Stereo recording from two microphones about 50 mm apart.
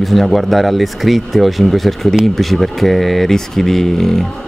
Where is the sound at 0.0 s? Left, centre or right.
Centre.